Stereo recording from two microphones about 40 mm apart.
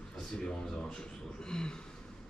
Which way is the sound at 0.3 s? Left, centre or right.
Centre.